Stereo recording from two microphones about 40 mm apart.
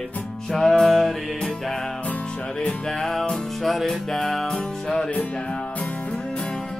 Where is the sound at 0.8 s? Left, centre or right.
Centre.